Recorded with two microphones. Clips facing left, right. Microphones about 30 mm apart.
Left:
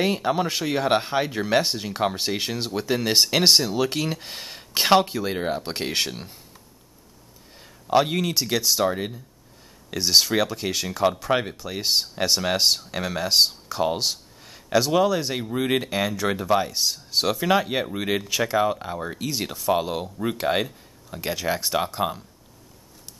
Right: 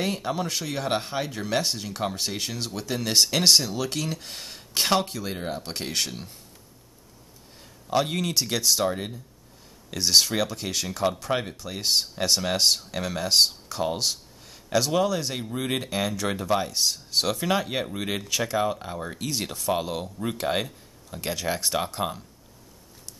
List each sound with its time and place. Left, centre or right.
0.0 s speech: centre
7.9 s speech: centre